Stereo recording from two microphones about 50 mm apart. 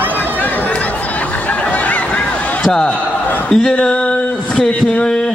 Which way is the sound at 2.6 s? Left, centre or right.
Centre.